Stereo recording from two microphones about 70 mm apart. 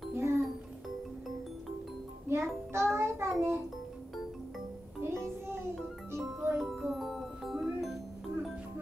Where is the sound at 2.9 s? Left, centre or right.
Right.